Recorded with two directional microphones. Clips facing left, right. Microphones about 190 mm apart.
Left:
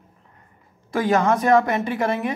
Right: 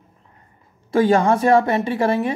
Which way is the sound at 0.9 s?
30° right (ahead or behind).